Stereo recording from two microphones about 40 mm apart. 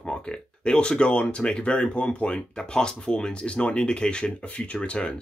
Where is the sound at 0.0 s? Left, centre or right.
Left.